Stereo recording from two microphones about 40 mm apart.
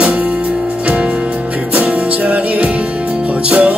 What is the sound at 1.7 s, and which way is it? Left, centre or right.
Music, right.